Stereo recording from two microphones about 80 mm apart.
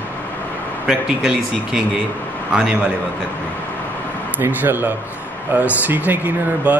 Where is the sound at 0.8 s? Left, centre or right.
Centre.